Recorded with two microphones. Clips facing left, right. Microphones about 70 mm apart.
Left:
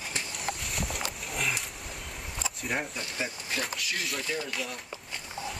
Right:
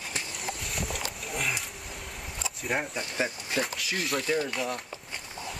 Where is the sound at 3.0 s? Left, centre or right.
Right.